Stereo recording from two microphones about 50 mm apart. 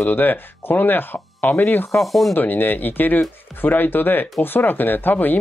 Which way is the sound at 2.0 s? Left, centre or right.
Centre.